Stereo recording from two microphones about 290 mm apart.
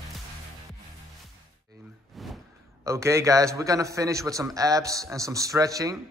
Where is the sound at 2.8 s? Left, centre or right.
Centre.